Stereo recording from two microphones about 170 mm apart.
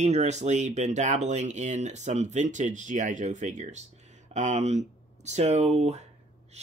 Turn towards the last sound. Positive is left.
turn(degrees=-40)  # may be behind; listen again after turning